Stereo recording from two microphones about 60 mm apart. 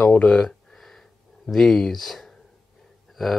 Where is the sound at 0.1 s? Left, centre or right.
Centre.